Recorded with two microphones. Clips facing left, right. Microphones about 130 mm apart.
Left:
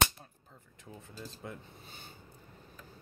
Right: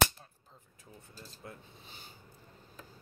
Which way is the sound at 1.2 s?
90° left.